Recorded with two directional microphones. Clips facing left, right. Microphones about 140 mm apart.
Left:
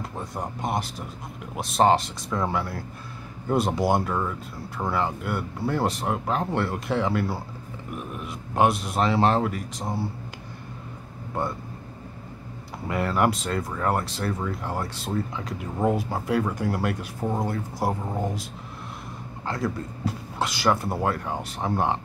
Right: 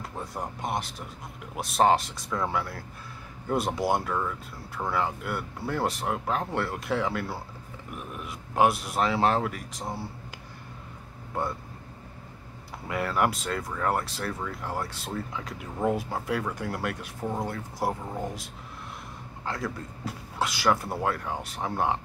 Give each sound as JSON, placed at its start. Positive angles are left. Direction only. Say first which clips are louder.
{"t": 0.6, "sound": "speech", "louder": "left 4 dB", "side_deg": 0}
{"t": 12.8, "sound": "speech", "louder": "left 3 dB", "side_deg": 0}
{"t": 18.0, "sound": "speech", "louder": "left 4 dB", "side_deg": 25}
{"t": 19.4, "sound": "speech", "louder": "left 4 dB", "side_deg": 0}